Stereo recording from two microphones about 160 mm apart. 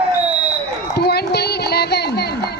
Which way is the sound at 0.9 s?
90° left.